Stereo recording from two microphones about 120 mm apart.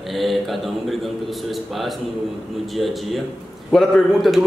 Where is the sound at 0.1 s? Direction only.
Centre (ahead or behind).